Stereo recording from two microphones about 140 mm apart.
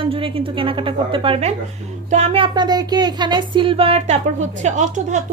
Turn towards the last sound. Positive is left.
turn(degrees=-60)  # may be behind; listen again after turning